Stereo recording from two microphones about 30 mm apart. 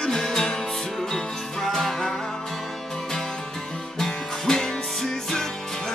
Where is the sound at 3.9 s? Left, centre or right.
Centre.